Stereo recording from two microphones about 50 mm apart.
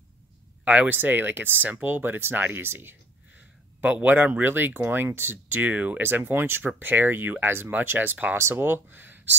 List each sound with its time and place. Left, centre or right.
0.7 s speech: right
0.9 s speech: right
3.3 s speech: right
5.6 s speech: right
6.0 s speech: right